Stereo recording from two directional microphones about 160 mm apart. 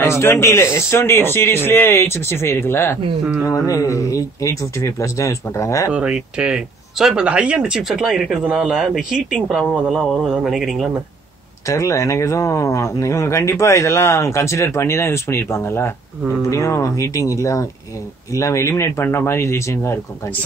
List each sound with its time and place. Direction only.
0.0 s speech: 15° left (ahead or behind)
5.9 s speech: 5° right (ahead or behind)
11.6 s speech: 20° left (ahead or behind)